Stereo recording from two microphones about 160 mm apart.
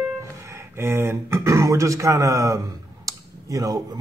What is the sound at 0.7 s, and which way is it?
Speech, 15° right (ahead or behind).